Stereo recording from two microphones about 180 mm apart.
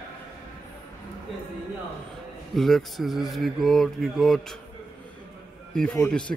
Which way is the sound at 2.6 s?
Centre (ahead or behind).